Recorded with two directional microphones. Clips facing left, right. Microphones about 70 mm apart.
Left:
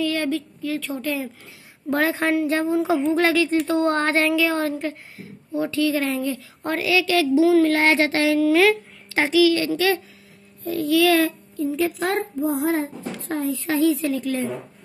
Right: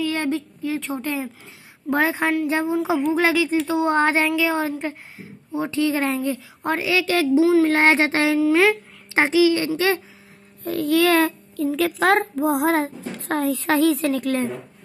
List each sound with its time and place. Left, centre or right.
0.0 s a woman's voice: right
6.6 s a woman's voice: centre
6.9 s a woman's voice: right
10.6 s a child's voice: right
11.5 s a child's voice: right